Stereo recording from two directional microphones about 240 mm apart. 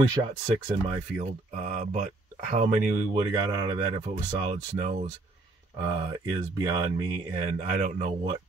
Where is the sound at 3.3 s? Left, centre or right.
Centre.